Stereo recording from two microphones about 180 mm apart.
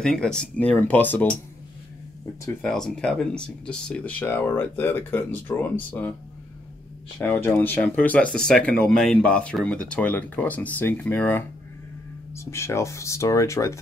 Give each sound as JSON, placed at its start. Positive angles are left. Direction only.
{"t": 0.0, "sound": "speech", "side_deg": 5}
{"t": 2.6, "sound": "speech", "side_deg": 5}
{"t": 7.2, "sound": "speech", "side_deg": 10}